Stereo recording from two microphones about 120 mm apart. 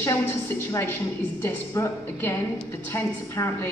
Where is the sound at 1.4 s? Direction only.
20° left (ahead or behind).